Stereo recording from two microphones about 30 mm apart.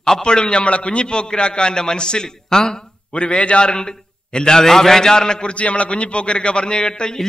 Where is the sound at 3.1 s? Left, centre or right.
Left.